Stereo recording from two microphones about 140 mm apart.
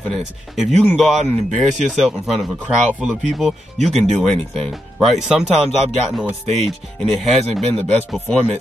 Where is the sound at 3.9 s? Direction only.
Centre (ahead or behind).